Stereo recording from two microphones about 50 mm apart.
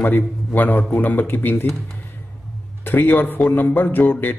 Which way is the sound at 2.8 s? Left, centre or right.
Left.